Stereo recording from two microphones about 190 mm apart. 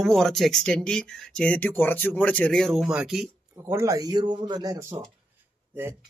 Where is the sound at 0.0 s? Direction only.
Centre (ahead or behind).